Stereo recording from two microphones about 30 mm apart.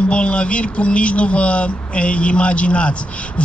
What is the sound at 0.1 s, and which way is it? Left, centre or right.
Speech, left.